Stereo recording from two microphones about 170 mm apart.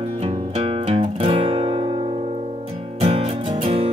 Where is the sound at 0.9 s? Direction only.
30° right (ahead or behind).